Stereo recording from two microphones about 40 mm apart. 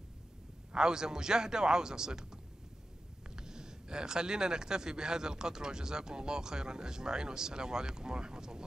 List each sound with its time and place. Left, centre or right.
0.7 s speech: centre